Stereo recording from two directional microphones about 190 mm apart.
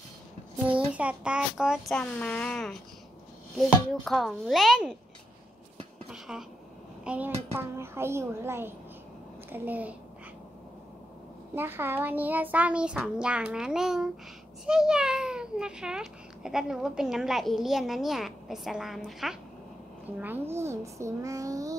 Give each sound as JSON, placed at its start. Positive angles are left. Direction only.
{"t": 0.7, "sound": "speech", "side_deg": -5}
{"t": 6.0, "sound": "a sound", "side_deg": 0}
{"t": 7.1, "sound": "a child's voice", "side_deg": -10}
{"t": 11.5, "sound": "a child's voice", "side_deg": -10}